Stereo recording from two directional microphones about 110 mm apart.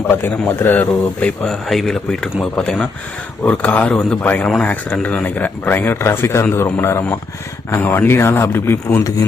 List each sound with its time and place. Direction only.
0.0 s speech: 20° left (ahead or behind)